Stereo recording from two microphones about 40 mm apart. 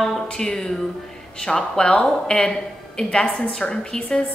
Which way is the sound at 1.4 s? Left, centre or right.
Centre.